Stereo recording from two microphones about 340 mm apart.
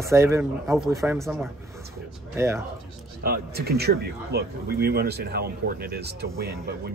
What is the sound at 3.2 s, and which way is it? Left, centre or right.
Speech, right.